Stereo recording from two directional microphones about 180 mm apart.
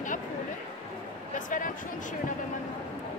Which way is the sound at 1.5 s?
45° left (ahead or behind).